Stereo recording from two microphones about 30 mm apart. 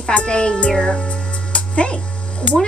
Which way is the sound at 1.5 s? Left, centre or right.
Left.